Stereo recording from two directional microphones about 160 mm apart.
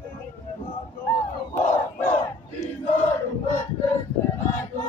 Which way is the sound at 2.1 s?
45° left (ahead or behind).